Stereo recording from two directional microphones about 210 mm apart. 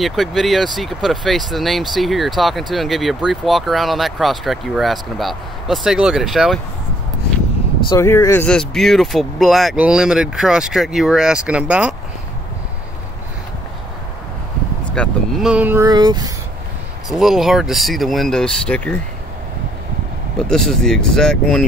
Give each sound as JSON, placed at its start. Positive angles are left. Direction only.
{"t": 0.0, "sound": "speech", "side_deg": 0}
{"t": 7.9, "sound": "speech", "side_deg": 15}
{"t": 15.0, "sound": "speech", "side_deg": -5}
{"t": 17.1, "sound": "speech", "side_deg": 0}
{"t": 20.3, "sound": "speech", "side_deg": 5}